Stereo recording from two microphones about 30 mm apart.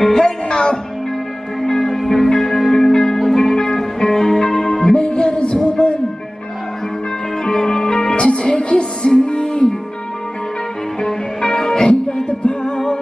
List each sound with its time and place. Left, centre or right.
0.1 s music: left
1.7 s music: centre
4.9 s music: left
7.4 s music: left
8.3 s music: left
11.4 s music: left